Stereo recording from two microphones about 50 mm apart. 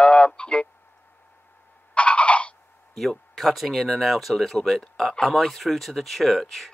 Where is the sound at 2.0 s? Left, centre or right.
Left.